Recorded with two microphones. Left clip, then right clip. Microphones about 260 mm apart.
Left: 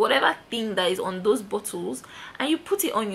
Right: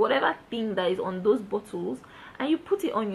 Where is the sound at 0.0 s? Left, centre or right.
Centre.